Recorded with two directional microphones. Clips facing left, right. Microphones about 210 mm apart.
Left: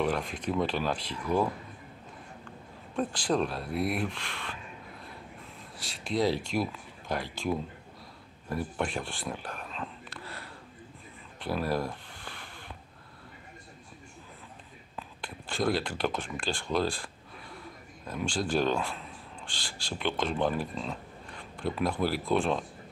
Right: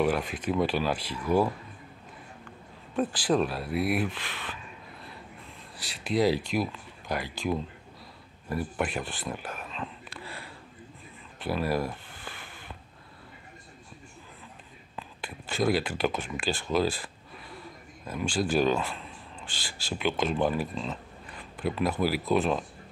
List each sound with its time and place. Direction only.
0.0 s speech: 5° right (ahead or behind)
3.0 s speech: 5° right (ahead or behind)
5.8 s speech: 5° right (ahead or behind)
10.0 s a sound: 10° right (ahead or behind)
15.0 s speech: 5° right (ahead or behind)